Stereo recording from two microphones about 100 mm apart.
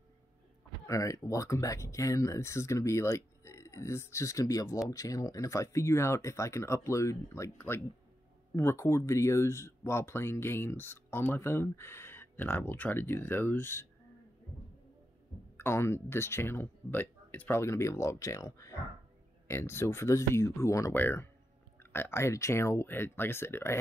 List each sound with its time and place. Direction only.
0.8 s speech: 35° left (ahead or behind)
15.5 s speech: 25° left (ahead or behind)